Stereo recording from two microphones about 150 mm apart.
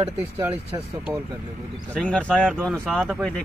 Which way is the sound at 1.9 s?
5° left (ahead or behind).